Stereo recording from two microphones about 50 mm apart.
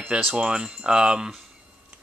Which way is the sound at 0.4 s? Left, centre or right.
Centre.